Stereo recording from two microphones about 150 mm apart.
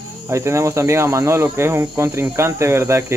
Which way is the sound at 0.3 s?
20° right (ahead or behind).